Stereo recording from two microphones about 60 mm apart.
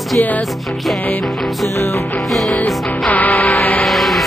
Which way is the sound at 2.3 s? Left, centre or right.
Centre.